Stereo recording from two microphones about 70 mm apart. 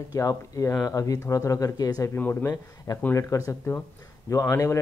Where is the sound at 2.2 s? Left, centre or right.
Left.